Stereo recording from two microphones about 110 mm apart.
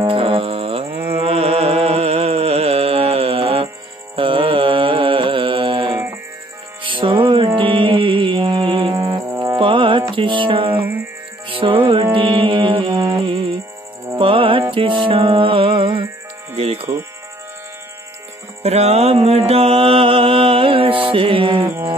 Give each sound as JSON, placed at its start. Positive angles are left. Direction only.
{"t": 0.1, "sound": "music", "side_deg": -55}
{"t": 4.1, "sound": "carnatic music", "side_deg": -50}
{"t": 6.8, "sound": "music", "side_deg": -50}
{"t": 10.8, "sound": "music", "side_deg": -15}
{"t": 11.4, "sound": "music", "side_deg": -50}
{"t": 18.6, "sound": "mantra", "side_deg": -75}